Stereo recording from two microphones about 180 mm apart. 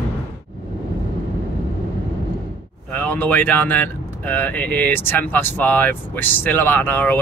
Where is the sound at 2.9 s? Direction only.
10° left (ahead or behind).